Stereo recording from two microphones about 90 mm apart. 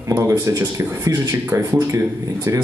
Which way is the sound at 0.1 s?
40° right (ahead or behind).